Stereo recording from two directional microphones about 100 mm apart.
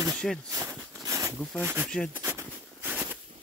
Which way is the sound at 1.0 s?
35° right (ahead or behind).